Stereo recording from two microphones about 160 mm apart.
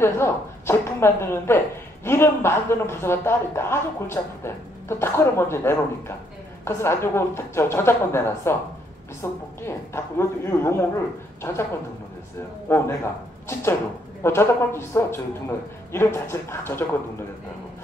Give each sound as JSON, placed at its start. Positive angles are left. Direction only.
{"t": 0.0, "sound": "a man's voice", "side_deg": 15}
{"t": 12.6, "sound": "a man's voice", "side_deg": 15}